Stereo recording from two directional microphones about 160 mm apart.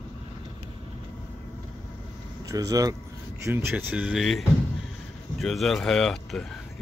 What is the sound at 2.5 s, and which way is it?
Speech, 20° right (ahead or behind).